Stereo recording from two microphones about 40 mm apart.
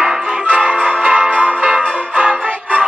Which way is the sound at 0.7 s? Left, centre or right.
Right.